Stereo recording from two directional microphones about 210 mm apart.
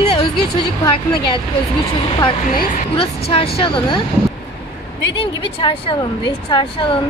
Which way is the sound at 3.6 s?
25° left (ahead or behind).